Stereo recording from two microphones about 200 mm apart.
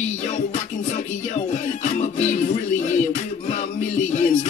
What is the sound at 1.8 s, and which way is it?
Music, 35° left (ahead or behind).